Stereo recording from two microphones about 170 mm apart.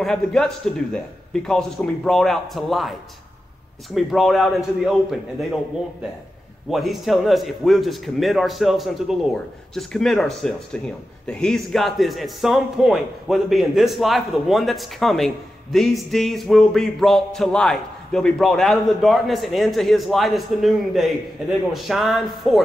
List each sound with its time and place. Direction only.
0.0 s speech: 5° left (ahead or behind)
6.7 s speech: centre (ahead or behind)